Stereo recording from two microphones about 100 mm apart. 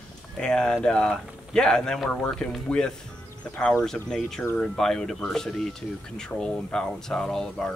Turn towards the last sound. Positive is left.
turn(degrees=5)  # may be behind; listen again after turning